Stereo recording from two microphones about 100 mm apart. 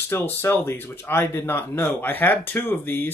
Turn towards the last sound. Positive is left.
turn(degrees=20)  # may be behind; listen again after turning